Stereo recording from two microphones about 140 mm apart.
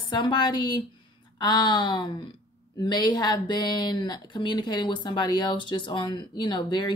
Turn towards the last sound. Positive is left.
turn(degrees=30)  # may be behind; listen again after turning